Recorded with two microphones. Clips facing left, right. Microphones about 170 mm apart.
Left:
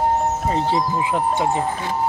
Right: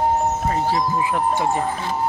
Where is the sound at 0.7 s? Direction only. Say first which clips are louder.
Even; 20° left (ahead or behind).